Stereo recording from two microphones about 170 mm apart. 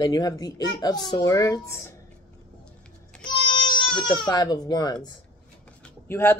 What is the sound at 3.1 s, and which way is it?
Child singing, 5° left (ahead or behind).